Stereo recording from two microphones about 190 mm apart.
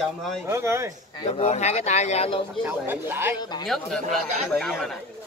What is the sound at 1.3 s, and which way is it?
Speech, 35° left (ahead or behind).